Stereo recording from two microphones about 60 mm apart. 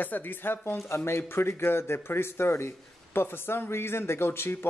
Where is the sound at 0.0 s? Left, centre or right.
Left.